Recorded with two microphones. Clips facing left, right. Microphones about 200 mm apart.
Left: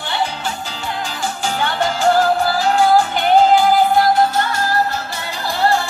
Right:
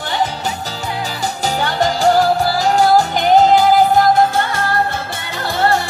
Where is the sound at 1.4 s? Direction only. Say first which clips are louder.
Right 3 dB; 40° right (ahead or behind).